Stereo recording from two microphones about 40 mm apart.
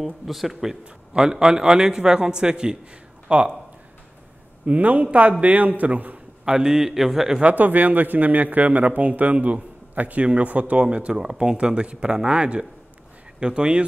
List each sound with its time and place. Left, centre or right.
0.0 s a man's voice: centre; by 3.5 s right
4.6 s speech: right
6.4 s a man's voice: centre
7.5 s a man's voice: right